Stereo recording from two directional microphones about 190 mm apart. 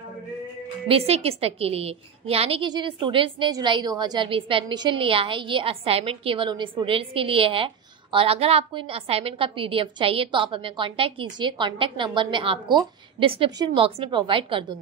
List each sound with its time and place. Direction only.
0.8 s a woman's voice: 30° right (ahead or behind)